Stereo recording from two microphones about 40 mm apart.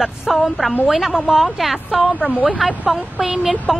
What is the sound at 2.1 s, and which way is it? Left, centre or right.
Speech, left.